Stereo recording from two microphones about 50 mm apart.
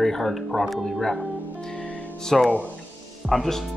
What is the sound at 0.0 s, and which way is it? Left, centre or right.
Speech, centre.